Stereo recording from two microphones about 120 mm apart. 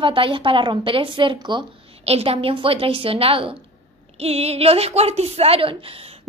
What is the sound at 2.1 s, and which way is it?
A woman's voice, 55° right (ahead or behind).